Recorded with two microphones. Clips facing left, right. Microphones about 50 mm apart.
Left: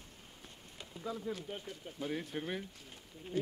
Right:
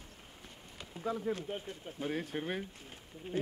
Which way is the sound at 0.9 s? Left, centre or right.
Right.